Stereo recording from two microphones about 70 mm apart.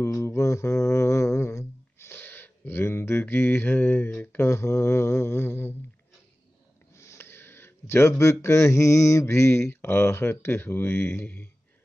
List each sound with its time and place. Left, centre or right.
0.0 s mantra: left
4.2 s speech: left
4.5 s speech: left
7.0 s speech: left